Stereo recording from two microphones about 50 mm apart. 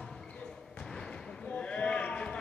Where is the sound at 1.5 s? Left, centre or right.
Left.